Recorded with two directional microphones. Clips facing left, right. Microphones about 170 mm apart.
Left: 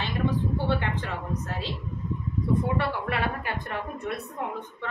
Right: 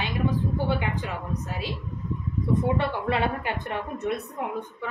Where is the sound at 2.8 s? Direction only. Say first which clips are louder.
Right 3 dB; 20° right (ahead or behind).